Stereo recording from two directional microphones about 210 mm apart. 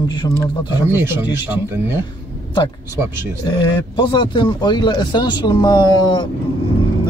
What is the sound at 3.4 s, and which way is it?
Speech, 25° left (ahead or behind).